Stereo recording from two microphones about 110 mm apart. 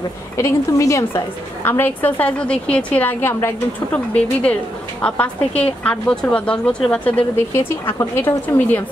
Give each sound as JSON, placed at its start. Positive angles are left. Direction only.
{"t": 0.4, "sound": "a woman's voice", "side_deg": 25}
{"t": 4.1, "sound": "a woman's voice", "side_deg": 10}
{"t": 7.5, "sound": "a woman's voice", "side_deg": 20}